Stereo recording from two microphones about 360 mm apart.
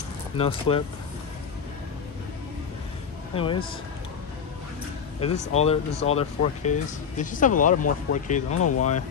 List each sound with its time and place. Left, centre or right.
0.4 s speech: centre
3.3 s speech: centre
5.2 s speech: centre
8.5 s speech: left